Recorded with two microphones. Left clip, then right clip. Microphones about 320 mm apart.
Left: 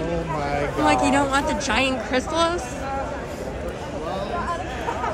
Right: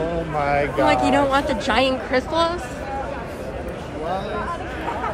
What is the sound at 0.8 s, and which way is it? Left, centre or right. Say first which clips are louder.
A woman's voice: even; centre.